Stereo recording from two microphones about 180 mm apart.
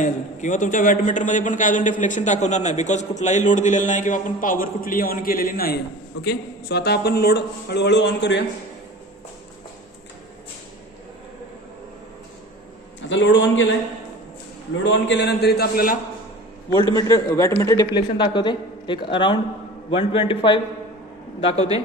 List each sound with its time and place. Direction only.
0.0 s a man's voice: 45° left (ahead or behind)
6.2 s a man's voice: 65° left (ahead or behind)
13.1 s a man's voice: 90° left
14.9 s a man's voice: 80° left; by 16.0 s 55° left (ahead or behind)
16.9 s a woman's voice: 20° left (ahead or behind)